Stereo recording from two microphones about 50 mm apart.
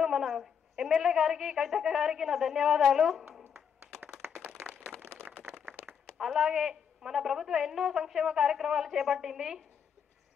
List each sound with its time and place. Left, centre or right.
0.0 s a woman's voice: centre
5.0 s a sound: right
5.9 s a woman's voice: centre